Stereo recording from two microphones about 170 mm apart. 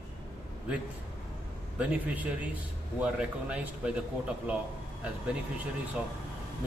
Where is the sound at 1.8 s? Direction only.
5° right (ahead or behind).